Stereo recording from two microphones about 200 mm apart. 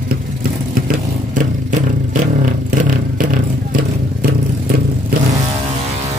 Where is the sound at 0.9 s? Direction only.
40° right (ahead or behind).